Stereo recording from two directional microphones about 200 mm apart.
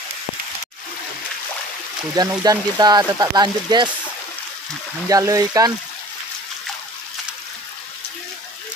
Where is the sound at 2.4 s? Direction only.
20° right (ahead or behind).